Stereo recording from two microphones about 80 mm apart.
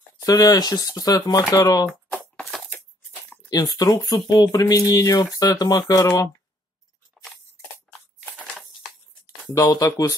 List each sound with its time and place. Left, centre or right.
0.2 s speech: left
3.4 s speech: left
9.5 s speech: left